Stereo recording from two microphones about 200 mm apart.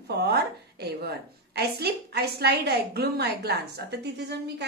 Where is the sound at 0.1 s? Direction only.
55° right (ahead or behind).